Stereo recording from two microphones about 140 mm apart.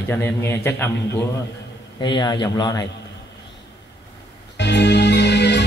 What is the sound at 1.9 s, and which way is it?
Speech, 35° left (ahead or behind).